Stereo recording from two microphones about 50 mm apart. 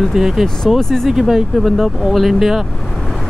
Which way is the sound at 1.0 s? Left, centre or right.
Centre.